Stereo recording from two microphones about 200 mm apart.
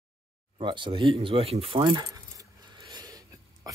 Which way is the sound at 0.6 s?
25° right (ahead or behind).